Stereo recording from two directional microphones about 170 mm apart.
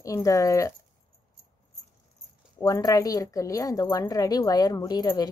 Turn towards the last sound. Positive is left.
turn(degrees=25)  # may be behind; listen again after turning